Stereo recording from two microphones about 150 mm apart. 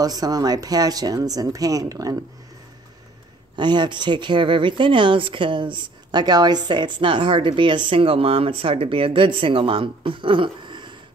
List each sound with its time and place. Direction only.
0.0 s speech: 25° right (ahead or behind)
3.5 s speech: 30° right (ahead or behind)